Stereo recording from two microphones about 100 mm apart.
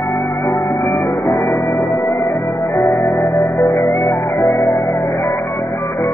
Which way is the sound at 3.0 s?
Centre (ahead or behind).